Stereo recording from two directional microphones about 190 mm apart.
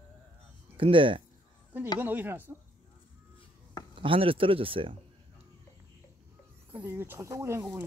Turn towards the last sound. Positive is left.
turn(degrees=-15)  # may be behind; listen again after turning